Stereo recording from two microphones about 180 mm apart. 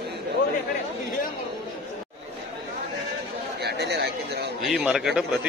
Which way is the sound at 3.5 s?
65° right (ahead or behind).